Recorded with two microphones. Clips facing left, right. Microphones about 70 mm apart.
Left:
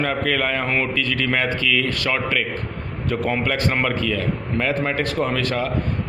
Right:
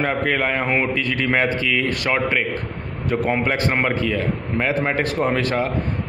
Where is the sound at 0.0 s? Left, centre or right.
Right.